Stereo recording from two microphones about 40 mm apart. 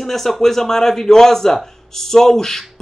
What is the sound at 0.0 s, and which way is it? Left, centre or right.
A man's voice, centre.